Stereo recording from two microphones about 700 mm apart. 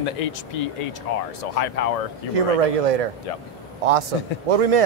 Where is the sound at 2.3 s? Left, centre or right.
Right.